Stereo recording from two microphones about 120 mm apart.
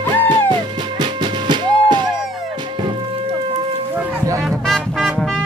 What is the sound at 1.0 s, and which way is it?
Music, 40° right (ahead or behind).